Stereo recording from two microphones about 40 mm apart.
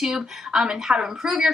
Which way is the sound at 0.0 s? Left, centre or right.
Centre.